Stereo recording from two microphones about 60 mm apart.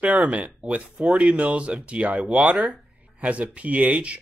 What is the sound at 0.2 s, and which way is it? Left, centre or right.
Speech, centre.